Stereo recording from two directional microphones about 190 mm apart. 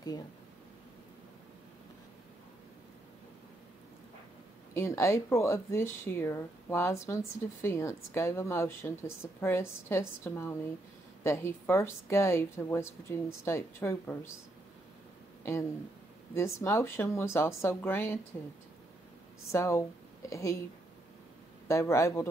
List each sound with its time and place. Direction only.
4.7 s speech: 15° left (ahead or behind)
16.3 s speech: 15° left (ahead or behind)
19.5 s speech: 15° left (ahead or behind)
21.6 s speech: 15° left (ahead or behind)